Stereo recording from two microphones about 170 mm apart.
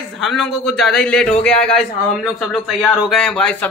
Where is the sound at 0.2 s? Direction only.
Centre (ahead or behind).